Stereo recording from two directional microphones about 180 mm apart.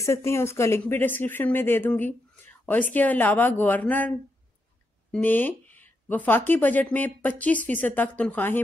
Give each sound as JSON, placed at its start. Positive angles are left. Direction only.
{"t": 0.0, "sound": "speech", "side_deg": 15}
{"t": 5.1, "sound": "speech", "side_deg": 10}